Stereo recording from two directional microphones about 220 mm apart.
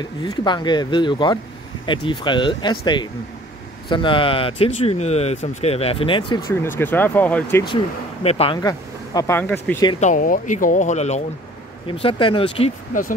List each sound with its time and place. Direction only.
0.0 s speech: 20° left (ahead or behind)
7.6 s speech: 25° left (ahead or behind); by 9.8 s 10° left (ahead or behind)
9.9 s speech: 35° left (ahead or behind)